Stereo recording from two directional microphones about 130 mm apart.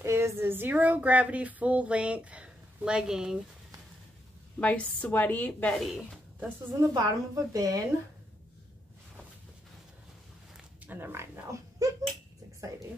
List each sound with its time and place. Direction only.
0.0 s speech: 20° right (ahead or behind); by 3.3 s 5° right (ahead or behind)
4.6 s a woman's voice: 10° left (ahead or behind)
6.7 s a woman's voice: 30° right (ahead or behind)
10.9 s speech: 15° right (ahead or behind)